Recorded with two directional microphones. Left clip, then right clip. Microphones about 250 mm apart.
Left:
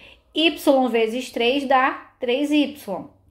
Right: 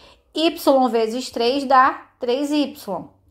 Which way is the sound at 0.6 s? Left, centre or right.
Right.